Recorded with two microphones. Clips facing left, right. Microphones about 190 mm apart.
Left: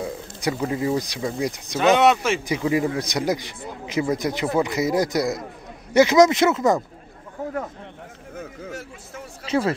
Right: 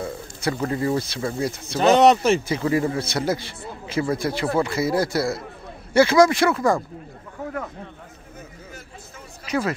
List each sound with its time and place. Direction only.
0.0 s speech: 15° left (ahead or behind)
1.8 s speech: 40° right (ahead or behind)
2.4 s a man's voice: 15° left (ahead or behind)
8.4 s a sound: 80° left
9.5 s speech: 30° left (ahead or behind)